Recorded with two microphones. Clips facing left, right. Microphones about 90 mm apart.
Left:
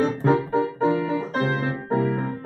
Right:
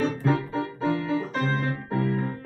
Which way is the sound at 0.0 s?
20° left (ahead or behind).